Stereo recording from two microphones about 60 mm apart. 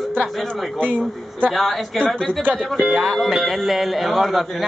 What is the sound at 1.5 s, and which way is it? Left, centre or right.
Speech, centre.